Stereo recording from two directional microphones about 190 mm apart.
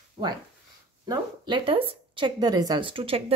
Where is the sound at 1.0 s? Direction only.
20° right (ahead or behind).